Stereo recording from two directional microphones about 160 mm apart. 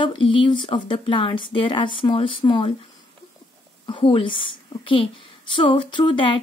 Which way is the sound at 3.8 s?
30° left (ahead or behind).